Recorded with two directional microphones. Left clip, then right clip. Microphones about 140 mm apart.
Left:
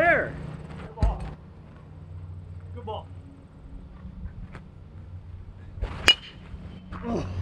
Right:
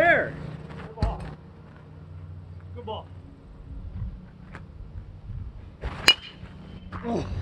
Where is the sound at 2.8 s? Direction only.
30° left (ahead or behind).